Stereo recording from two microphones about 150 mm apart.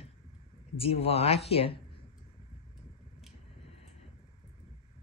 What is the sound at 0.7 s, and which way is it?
Speech, 40° left (ahead or behind).